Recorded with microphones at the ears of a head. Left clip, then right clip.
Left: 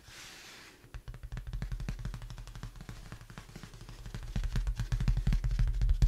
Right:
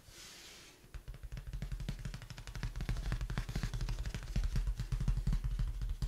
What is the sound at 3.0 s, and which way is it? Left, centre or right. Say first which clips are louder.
Music: right 5 dB; right.